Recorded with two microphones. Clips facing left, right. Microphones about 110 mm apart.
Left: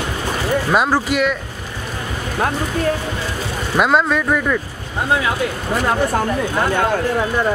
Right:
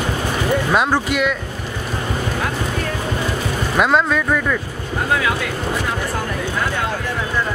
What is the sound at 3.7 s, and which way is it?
Speech, centre (ahead or behind).